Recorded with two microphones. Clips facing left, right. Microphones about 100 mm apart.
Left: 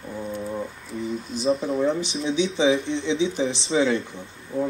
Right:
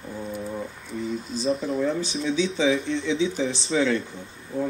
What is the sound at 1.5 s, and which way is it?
Speech, centre (ahead or behind).